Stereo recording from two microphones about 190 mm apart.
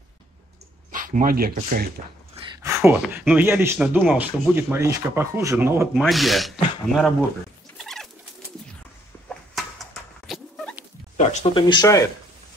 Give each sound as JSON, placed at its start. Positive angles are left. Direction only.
{"t": 0.9, "sound": "speech", "side_deg": -45}
{"t": 2.6, "sound": "speech", "side_deg": -10}
{"t": 6.0, "sound": "speech", "side_deg": 0}
{"t": 7.7, "sound": "pigeon", "side_deg": 0}
{"t": 9.6, "sound": "dog", "side_deg": 0}
{"t": 11.1, "sound": "a sound", "side_deg": 35}
{"t": 11.7, "sound": "speech", "side_deg": 20}